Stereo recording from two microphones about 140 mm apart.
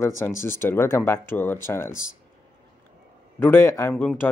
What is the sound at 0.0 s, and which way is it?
A man's voice, 20° left (ahead or behind).